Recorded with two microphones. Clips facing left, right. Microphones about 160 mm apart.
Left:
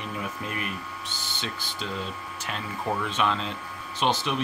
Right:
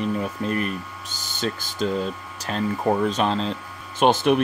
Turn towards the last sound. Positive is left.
turn(degrees=-55)  # may be behind; listen again after turning